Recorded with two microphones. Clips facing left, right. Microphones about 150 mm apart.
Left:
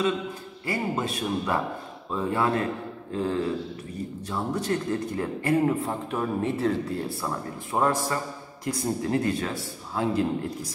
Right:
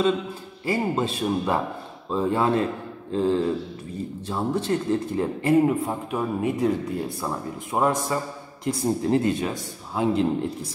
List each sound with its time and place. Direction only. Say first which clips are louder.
0.7 s a man's voice: right 4 dB; 25° right (ahead or behind)